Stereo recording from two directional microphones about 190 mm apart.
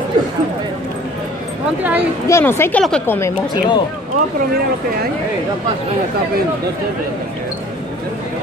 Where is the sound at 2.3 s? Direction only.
15° left (ahead or behind).